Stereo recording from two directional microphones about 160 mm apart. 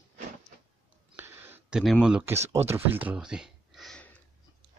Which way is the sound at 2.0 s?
5° right (ahead or behind).